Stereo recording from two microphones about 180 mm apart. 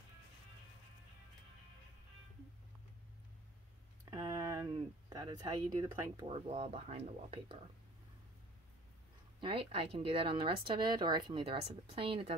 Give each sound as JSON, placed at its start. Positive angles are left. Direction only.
{"t": 4.0, "sound": "a sound", "side_deg": -20}
{"t": 6.2, "sound": "speech", "side_deg": -35}
{"t": 9.4, "sound": "a woman's voice", "side_deg": -30}